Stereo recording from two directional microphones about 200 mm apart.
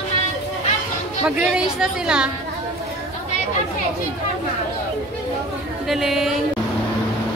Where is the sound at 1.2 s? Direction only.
5° right (ahead or behind).